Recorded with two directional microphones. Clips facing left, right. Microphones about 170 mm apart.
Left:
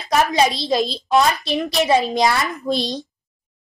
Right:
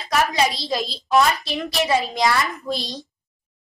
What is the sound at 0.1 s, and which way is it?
A woman's voice, 25° left (ahead or behind).